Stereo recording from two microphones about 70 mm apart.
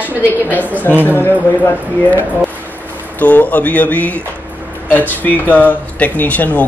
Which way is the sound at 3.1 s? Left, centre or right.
Left.